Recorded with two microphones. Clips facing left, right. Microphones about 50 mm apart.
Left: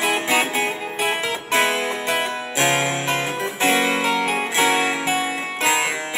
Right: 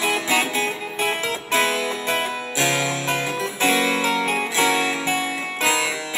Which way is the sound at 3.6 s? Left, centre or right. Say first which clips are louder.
Left 1 dB; left.